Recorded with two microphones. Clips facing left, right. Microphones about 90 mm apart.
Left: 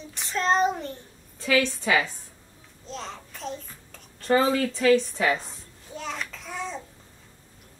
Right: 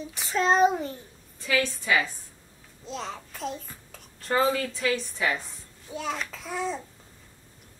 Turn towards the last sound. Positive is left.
turn(degrees=-5)  # may be behind; listen again after turning